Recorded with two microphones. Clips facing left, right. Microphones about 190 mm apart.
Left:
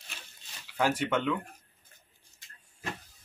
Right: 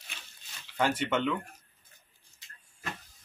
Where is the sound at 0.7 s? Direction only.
5° left (ahead or behind).